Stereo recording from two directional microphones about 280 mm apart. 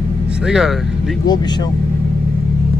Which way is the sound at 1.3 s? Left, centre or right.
Centre.